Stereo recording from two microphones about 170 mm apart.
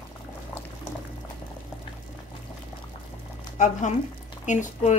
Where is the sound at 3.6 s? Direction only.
45° left (ahead or behind).